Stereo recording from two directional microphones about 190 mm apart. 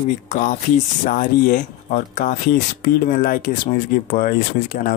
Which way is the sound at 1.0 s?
40° left (ahead or behind).